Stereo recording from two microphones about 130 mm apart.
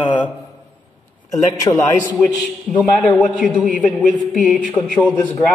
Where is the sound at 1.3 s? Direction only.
30° left (ahead or behind).